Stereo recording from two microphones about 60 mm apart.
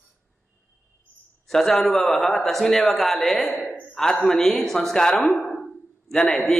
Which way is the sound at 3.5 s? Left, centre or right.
Left.